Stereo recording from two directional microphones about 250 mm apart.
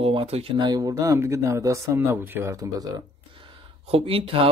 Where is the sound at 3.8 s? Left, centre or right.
Right.